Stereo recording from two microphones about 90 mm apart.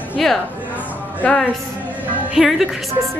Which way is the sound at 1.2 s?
20° left (ahead or behind).